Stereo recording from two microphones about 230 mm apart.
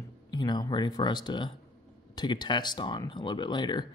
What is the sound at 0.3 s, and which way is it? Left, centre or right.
Speech, centre.